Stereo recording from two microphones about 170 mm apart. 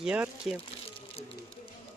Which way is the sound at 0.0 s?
5° right (ahead or behind).